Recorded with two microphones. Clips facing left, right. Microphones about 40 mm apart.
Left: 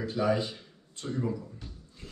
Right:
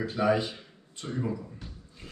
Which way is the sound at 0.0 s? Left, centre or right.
Right.